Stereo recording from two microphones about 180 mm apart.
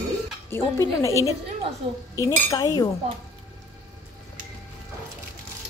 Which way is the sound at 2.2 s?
20° left (ahead or behind).